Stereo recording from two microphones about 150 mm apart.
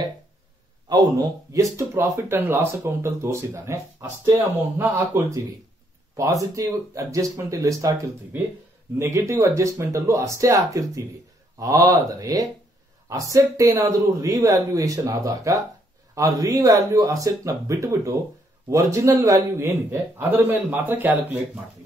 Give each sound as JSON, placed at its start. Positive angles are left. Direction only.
{"t": 0.8, "sound": "a man's voice", "side_deg": -25}
{"t": 11.6, "sound": "a man's voice", "side_deg": -25}